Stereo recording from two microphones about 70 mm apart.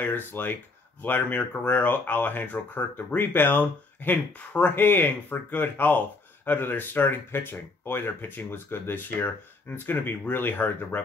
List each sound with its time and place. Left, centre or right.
0.0 s speech: left